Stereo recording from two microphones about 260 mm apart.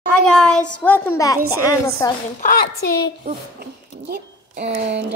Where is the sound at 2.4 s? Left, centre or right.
Left.